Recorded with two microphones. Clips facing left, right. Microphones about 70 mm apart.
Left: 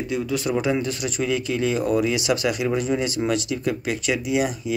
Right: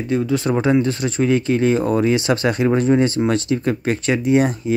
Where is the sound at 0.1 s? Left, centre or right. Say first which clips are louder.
Right 6 dB; right.